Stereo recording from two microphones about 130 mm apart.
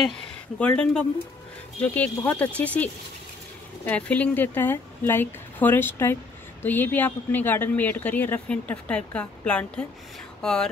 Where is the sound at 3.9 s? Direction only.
10° left (ahead or behind).